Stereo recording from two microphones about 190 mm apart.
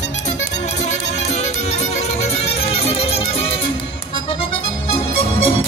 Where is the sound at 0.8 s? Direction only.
35° left (ahead or behind).